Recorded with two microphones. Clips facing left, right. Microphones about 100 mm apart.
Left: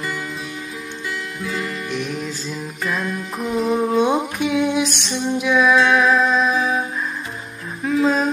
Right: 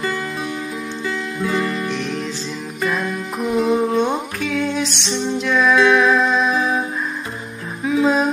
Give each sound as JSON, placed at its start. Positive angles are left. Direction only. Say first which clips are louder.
{"t": 1.9, "sound": "music", "louder": "right 2 dB", "side_deg": 10}
{"t": 2.8, "sound": "music", "louder": "right 3 dB", "side_deg": 0}
{"t": 4.0, "sound": "music", "louder": "left 2 dB", "side_deg": 15}
{"t": 4.8, "sound": "music", "louder": "even", "side_deg": 50}
{"t": 5.1, "sound": "music", "louder": "left 1 dB", "side_deg": 10}
{"t": 7.8, "sound": "music", "louder": "right 1 dB", "side_deg": -5}